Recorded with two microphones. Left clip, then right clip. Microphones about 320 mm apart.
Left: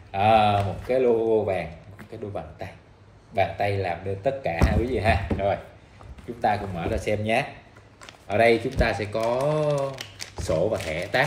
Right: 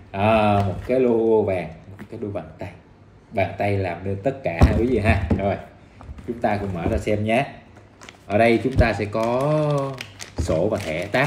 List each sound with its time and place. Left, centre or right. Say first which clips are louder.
0.1 s speech: even; centre